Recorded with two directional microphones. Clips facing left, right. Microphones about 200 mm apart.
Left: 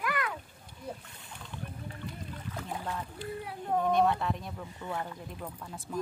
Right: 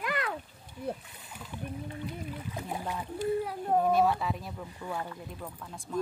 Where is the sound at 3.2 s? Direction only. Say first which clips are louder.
Right 8 dB; 40° right (ahead or behind).